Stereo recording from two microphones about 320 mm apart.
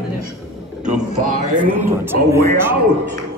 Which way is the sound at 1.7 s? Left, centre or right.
Centre.